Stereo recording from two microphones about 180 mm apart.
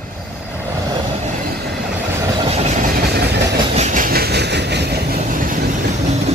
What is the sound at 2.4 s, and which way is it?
Train, 40° right (ahead or behind).